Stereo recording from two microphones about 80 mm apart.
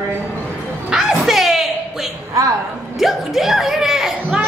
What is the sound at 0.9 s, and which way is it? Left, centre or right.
Music, centre.